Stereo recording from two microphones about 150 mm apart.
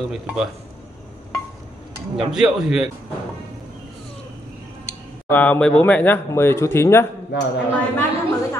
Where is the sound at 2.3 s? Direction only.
5° right (ahead or behind).